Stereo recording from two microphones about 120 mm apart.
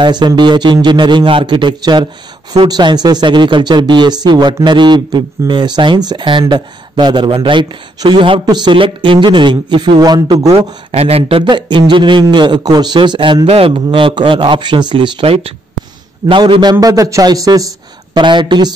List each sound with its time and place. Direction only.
0.0 s speech: 40° right (ahead or behind)
10.9 s a man's voice: 60° right (ahead or behind); by 16.7 s 40° right (ahead or behind)
16.8 s speech: 30° right (ahead or behind)